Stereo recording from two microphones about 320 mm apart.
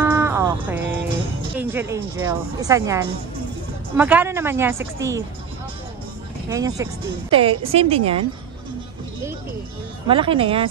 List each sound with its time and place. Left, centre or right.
0.0 s music: centre
1.6 s speech: centre
6.5 s speech: centre
10.0 s speech: centre